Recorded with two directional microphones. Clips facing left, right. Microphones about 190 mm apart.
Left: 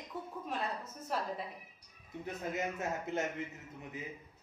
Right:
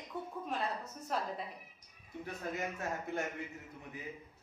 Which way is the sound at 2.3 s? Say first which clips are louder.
Left 2 dB; 20° left (ahead or behind).